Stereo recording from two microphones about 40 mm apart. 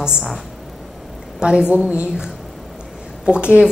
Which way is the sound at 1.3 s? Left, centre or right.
Right.